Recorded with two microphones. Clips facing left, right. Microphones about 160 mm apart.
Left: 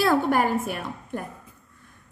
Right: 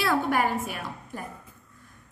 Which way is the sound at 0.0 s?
45° left (ahead or behind).